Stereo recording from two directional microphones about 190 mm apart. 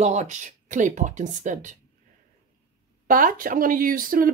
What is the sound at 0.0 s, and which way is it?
Speech, 35° right (ahead or behind).